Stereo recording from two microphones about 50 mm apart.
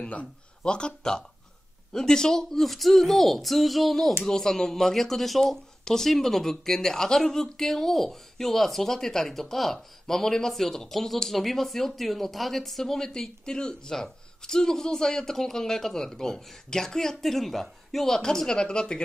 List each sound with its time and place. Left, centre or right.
0.0 s speech: left